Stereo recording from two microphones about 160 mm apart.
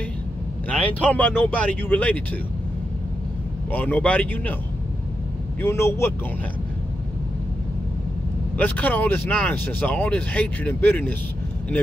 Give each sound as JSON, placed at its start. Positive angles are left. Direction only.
{"t": 0.7, "sound": "speech", "side_deg": 10}
{"t": 3.7, "sound": "speech", "side_deg": 10}
{"t": 5.6, "sound": "speech", "side_deg": 15}
{"t": 8.5, "sound": "speech", "side_deg": 10}